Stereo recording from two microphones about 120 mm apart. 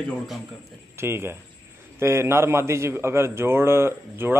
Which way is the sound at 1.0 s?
20° right (ahead or behind).